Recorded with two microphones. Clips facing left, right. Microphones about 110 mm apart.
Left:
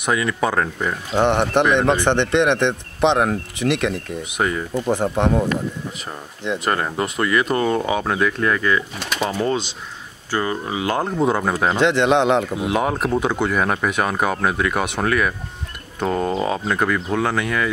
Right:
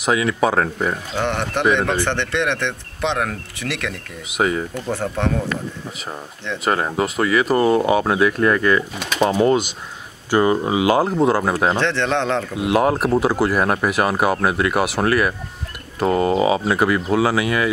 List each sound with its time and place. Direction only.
0.0 s speech: 5° right (ahead or behind)
1.1 s speech: 20° left (ahead or behind)
4.3 s speech: 5° right (ahead or behind)
4.7 s speech: 15° left (ahead or behind)
6.6 s speech: 5° right (ahead or behind)
9.2 s speech: 15° right (ahead or behind)
11.8 s speech: 15° left (ahead or behind)
12.5 s speech: centre (ahead or behind)